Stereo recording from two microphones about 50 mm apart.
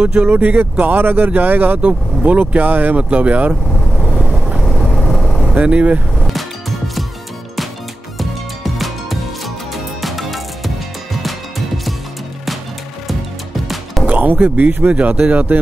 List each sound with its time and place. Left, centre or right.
0.0 s speech: right
4.3 s vehicle: centre
5.5 s speech: right
8.7 s music: centre
14.0 s speech: right